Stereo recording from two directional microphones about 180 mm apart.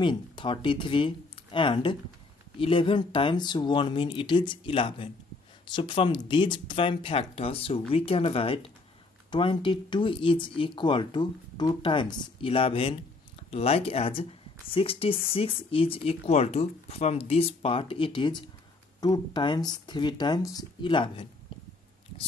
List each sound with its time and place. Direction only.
0.0 s speech: 25° left (ahead or behind)